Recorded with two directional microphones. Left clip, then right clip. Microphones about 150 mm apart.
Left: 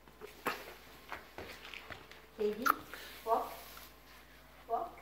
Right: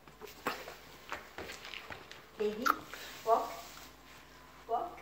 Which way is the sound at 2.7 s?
10° left (ahead or behind).